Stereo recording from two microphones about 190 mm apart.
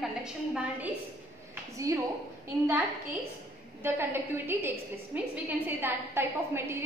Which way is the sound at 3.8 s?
10° right (ahead or behind).